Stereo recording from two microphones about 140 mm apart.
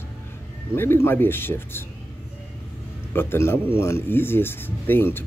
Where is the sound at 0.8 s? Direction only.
15° left (ahead or behind).